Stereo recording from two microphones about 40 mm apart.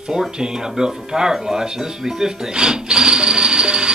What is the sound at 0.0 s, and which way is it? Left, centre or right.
Music, centre.